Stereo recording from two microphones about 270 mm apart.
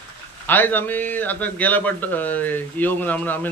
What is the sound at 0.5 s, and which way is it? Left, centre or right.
A man's voice, centre.